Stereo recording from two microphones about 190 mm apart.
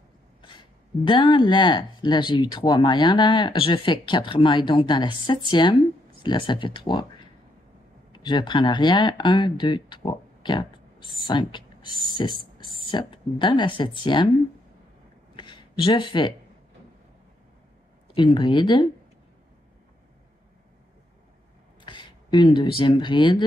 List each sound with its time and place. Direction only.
0.4 s speech: 25° left (ahead or behind)
15.3 s a sound: 25° left (ahead or behind)
18.1 s speech: 25° left (ahead or behind)
21.8 s speech: 25° left (ahead or behind)